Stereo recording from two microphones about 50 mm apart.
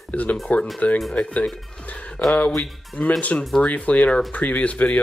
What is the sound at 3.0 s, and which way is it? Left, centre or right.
Speech, left.